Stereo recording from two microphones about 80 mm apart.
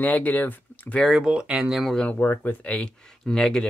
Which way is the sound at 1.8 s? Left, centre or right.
Centre.